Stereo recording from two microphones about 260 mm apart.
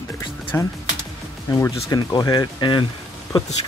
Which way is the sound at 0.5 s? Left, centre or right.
Centre.